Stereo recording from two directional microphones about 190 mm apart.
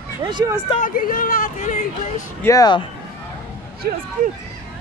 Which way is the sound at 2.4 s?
20° left (ahead or behind).